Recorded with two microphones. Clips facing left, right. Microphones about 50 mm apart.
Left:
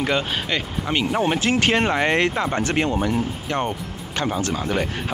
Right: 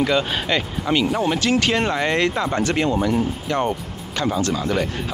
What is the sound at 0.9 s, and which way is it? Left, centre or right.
Speech, centre.